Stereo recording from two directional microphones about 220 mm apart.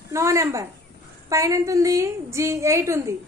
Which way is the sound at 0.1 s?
15° right (ahead or behind).